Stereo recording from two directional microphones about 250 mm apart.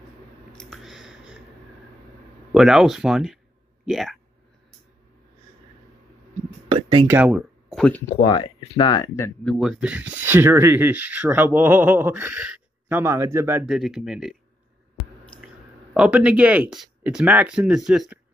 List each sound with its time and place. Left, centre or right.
0.5 s a sound: centre
2.5 s speech: centre
6.7 s speech: centre
7.2 s speech: centre
8.2 s speech: left; by 14.3 s centre
15.4 s speech: centre